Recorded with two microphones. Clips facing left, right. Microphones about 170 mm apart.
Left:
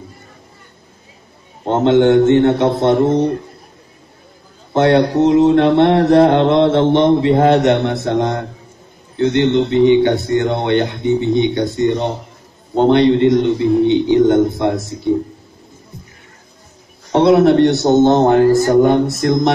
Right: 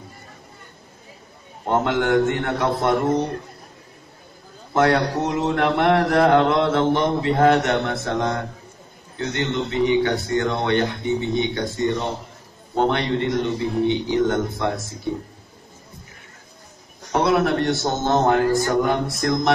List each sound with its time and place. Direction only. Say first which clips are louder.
1.7 s mantra: left 8 dB; 25° left (ahead or behind)
4.7 s mantra: left 7 dB; 25° left (ahead or behind)
17.1 s mantra: left 9 dB; 25° left (ahead or behind)